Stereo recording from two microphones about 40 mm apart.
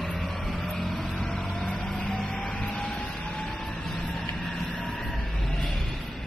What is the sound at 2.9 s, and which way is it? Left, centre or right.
Vehicle, left.